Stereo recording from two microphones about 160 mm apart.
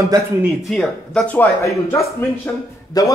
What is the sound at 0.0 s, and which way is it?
Speech, 20° right (ahead or behind).